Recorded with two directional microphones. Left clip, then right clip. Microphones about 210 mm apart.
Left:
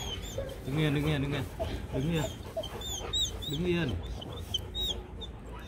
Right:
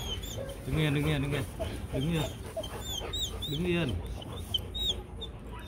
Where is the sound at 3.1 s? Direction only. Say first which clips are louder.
Left 6 dB; 10° right (ahead or behind).